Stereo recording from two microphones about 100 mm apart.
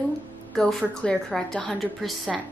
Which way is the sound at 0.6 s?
5° left (ahead or behind).